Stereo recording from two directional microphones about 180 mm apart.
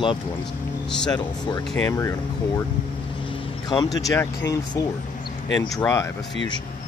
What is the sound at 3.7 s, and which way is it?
Speech, 25° left (ahead or behind).